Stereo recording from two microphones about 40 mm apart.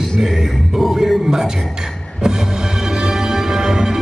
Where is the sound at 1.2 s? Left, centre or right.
Centre.